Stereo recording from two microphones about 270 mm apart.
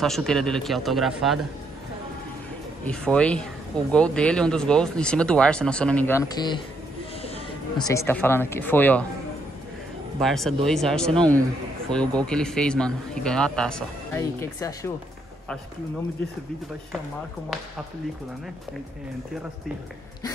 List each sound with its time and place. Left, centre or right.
0.0 s a man's voice: centre
2.8 s a man's voice: centre
10.2 s a man's voice: centre